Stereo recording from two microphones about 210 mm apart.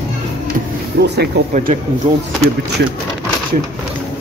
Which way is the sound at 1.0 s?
55° right (ahead or behind).